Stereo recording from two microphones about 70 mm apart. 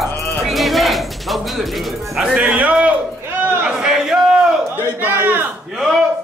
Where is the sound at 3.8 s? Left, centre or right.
Centre.